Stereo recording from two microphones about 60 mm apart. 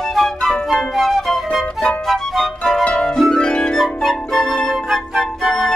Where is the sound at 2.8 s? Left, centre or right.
Centre.